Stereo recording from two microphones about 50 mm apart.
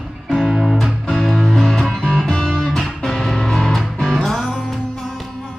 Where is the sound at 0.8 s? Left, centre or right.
Centre.